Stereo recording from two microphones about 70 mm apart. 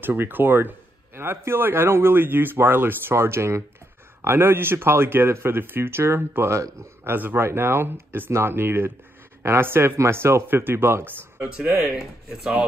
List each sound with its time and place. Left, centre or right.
0.0 s speech: right
11.8 s speech: centre